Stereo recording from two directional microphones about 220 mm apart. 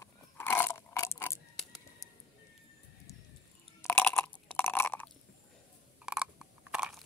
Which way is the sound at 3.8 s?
10° left (ahead or behind).